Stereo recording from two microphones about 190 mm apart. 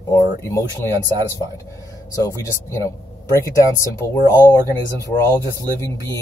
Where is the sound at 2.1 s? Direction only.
15° left (ahead or behind).